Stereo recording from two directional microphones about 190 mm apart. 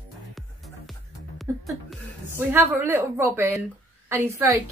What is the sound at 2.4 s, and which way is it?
A woman's voice, 10° right (ahead or behind).